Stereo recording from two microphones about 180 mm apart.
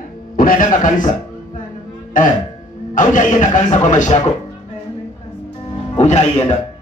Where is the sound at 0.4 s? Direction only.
50° left (ahead or behind).